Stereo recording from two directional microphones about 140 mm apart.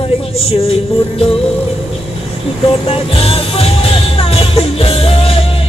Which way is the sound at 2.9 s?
45° left (ahead or behind).